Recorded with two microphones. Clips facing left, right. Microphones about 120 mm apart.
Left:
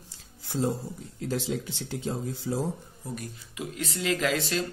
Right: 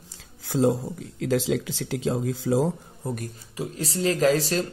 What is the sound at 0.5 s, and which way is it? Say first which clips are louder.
A man's voice: right 7 dB; 90° right.